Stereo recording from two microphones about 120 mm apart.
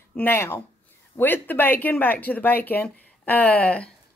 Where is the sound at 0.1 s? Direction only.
15° left (ahead or behind).